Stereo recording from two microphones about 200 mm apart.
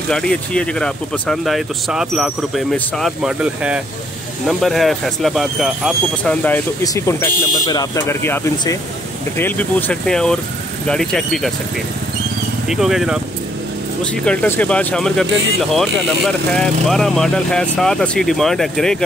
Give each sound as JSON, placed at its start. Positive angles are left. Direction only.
{"t": 0.1, "sound": "speech", "side_deg": 5}
{"t": 12.6, "sound": "speech", "side_deg": 0}